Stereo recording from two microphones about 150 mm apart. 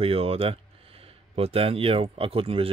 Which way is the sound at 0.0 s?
40° right (ahead or behind).